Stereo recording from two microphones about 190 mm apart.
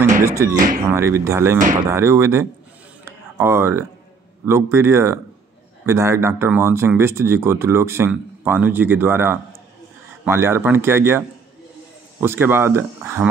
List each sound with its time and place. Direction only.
0.2 s speech: 15° right (ahead or behind)
3.1 s a sound: 10° right (ahead or behind)
4.5 s speech: 15° right (ahead or behind)